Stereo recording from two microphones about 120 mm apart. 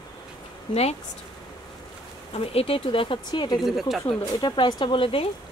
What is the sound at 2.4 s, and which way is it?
A woman's voice, 55° left (ahead or behind).